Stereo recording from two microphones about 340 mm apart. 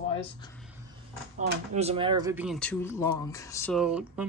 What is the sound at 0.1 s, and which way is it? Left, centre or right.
Speech, centre.